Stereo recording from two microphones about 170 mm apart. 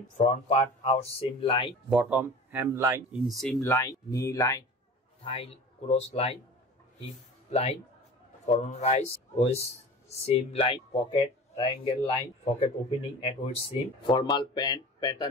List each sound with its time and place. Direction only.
0.2 s speech: 40° left (ahead or behind)
1.9 s speech: 5° right (ahead or behind)
3.3 s speech: centre (ahead or behind)
3.6 s speech: 20° left (ahead or behind)
5.2 s speech: 35° left (ahead or behind)
8.5 s speech: 40° left (ahead or behind)